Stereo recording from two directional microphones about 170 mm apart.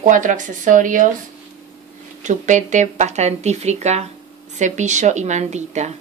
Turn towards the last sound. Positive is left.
turn(degrees=-40)  # may be behind; listen again after turning